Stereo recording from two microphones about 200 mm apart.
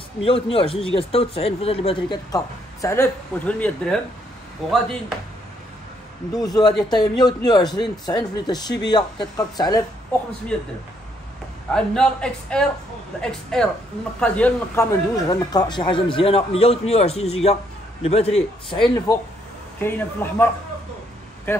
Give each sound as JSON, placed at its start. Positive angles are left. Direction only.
{"t": 0.2, "sound": "a man's voice", "side_deg": 25}
{"t": 6.3, "sound": "speech", "side_deg": 20}
{"t": 10.5, "sound": "a man's voice", "side_deg": 5}
{"t": 11.7, "sound": "a man's voice", "side_deg": 5}
{"t": 19.8, "sound": "a man's voice", "side_deg": 10}